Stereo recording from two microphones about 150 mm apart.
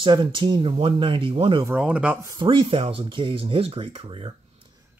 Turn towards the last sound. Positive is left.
turn(degrees=-35)  # may be behind; listen again after turning